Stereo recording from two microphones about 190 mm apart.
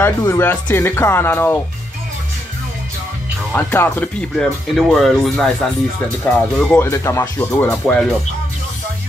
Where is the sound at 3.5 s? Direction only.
10° left (ahead or behind).